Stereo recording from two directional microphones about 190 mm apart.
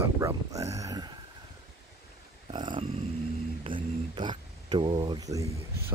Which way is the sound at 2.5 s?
25° right (ahead or behind).